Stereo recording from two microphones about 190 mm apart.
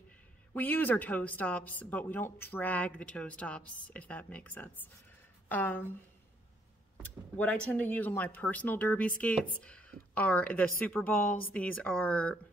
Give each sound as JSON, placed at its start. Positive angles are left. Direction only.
{"t": 0.6, "sound": "speech", "side_deg": 10}
{"t": 7.0, "sound": "speech", "side_deg": 10}